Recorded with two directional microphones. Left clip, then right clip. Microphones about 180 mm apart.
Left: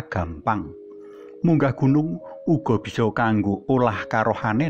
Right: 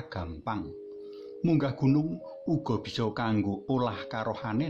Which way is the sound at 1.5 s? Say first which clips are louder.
Left 7 dB; 35° left (ahead or behind).